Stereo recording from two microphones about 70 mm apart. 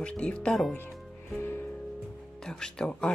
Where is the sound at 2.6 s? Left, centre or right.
Centre.